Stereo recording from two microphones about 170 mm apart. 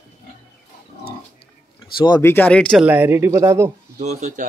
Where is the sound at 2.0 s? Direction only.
20° left (ahead or behind).